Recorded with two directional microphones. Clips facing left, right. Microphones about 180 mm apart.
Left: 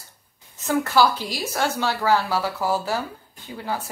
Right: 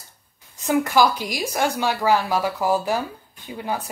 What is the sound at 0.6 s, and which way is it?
A woman's voice, 15° right (ahead or behind).